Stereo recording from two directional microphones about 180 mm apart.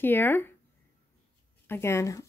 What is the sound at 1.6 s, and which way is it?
Speech, 15° left (ahead or behind).